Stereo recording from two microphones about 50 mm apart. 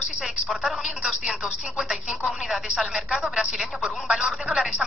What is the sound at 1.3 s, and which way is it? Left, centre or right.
Speech, centre.